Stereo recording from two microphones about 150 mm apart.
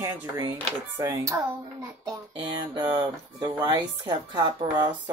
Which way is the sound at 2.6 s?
30° right (ahead or behind).